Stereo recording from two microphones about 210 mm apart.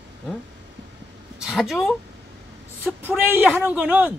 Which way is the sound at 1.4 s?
Centre (ahead or behind).